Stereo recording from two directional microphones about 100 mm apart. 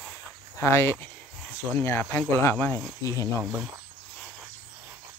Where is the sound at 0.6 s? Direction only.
25° left (ahead or behind).